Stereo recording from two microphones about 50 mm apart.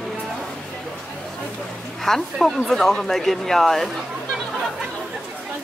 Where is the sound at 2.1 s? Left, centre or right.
Centre.